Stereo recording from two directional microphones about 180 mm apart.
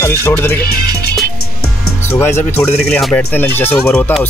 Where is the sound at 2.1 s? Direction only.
15° left (ahead or behind).